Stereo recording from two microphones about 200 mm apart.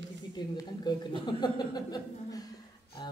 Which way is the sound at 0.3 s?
20° left (ahead or behind).